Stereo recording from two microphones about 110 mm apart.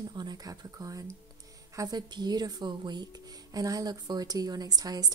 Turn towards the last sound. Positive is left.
turn(degrees=-35)  # may be behind; listen again after turning